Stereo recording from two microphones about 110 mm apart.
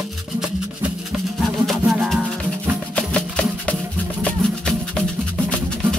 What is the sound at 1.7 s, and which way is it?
Music, centre (ahead or behind).